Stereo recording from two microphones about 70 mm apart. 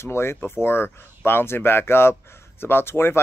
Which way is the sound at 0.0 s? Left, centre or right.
Left.